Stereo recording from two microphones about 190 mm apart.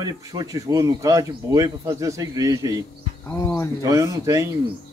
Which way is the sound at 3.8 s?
15° right (ahead or behind).